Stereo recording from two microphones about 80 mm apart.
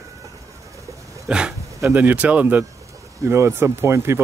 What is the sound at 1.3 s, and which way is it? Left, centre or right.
Speech, centre.